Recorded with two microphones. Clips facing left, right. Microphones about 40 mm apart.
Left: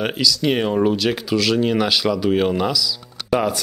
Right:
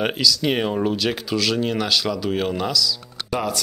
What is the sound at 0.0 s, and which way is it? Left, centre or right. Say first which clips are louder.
Speech: left 1 dB; centre.